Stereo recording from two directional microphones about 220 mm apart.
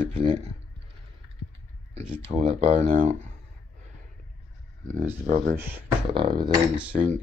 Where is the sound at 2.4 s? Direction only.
25° right (ahead or behind).